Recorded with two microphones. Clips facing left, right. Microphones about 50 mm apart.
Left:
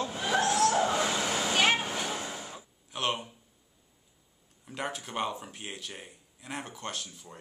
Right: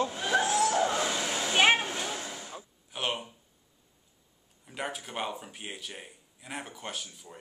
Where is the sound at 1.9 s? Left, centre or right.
Centre.